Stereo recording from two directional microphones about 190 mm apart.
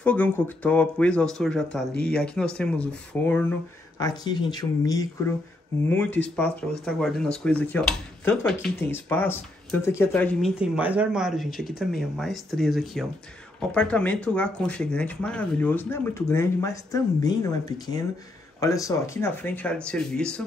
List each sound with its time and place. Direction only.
0.0 s speech: 5° left (ahead or behind)
4.0 s speech: 20° left (ahead or behind)
6.0 s speech: 70° left (ahead or behind)
6.3 s speech: 5° left (ahead or behind)
10.6 s speech: 10° right (ahead or behind)